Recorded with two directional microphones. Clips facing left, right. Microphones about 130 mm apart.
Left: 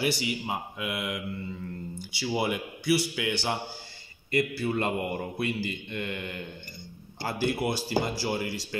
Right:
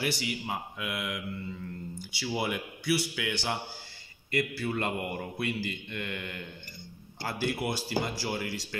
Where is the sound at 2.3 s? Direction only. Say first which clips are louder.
Left 3 dB; 10° left (ahead or behind).